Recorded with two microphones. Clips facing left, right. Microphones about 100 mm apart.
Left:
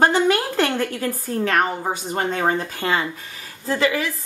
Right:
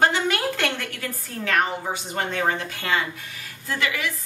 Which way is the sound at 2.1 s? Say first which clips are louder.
Left 3 dB; 35° left (ahead or behind).